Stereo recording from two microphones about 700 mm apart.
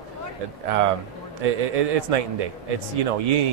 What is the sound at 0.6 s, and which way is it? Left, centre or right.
Speech, right.